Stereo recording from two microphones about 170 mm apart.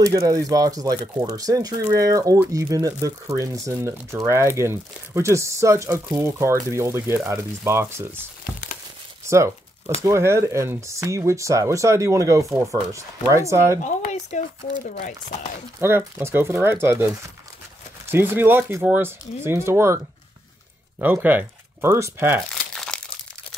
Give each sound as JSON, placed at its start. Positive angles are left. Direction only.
{"t": 0.0, "sound": "speech", "side_deg": -20}
{"t": 9.3, "sound": "speech", "side_deg": -15}
{"t": 13.8, "sound": "speech", "side_deg": 45}
{"t": 15.8, "sound": "speech", "side_deg": -15}
{"t": 18.1, "sound": "speech", "side_deg": -10}
{"t": 21.0, "sound": "speech", "side_deg": -10}
{"t": 22.5, "sound": "crumpling", "side_deg": 5}